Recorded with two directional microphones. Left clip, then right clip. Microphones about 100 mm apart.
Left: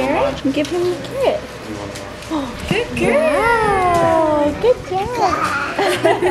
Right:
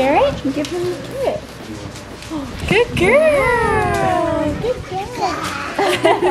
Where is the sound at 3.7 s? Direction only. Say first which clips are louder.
Left 3 dB; 15° right (ahead or behind).